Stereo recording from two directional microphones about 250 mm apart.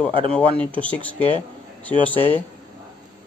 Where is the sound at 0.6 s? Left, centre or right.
Centre.